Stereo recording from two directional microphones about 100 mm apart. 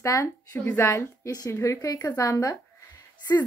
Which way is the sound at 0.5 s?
15° left (ahead or behind).